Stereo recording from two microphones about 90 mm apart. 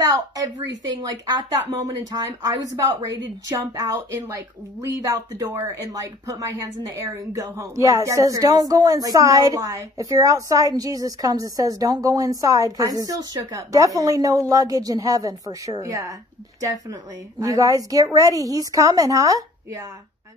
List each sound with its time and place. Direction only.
0.0 s speech: 40° right (ahead or behind)